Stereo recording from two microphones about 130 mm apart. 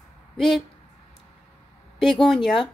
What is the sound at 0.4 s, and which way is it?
Speech, 5° left (ahead or behind).